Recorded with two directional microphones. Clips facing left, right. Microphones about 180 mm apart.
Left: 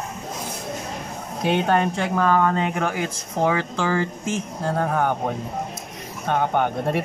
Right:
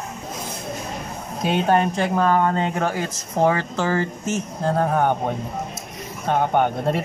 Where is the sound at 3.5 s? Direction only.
45° right (ahead or behind).